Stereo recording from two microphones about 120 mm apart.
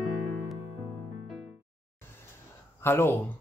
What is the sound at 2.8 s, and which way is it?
Speech, 20° left (ahead or behind).